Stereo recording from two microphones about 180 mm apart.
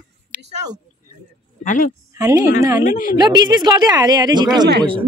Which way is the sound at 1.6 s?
45° left (ahead or behind).